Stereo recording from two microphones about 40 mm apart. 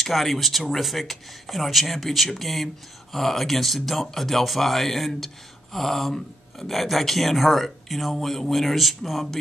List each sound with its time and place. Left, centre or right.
0.0 s speech: centre